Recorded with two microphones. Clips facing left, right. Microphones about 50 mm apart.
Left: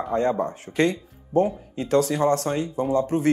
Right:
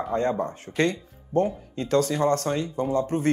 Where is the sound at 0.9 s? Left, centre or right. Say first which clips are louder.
Left 2 dB; centre.